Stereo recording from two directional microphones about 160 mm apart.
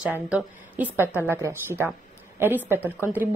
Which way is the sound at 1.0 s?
15° right (ahead or behind).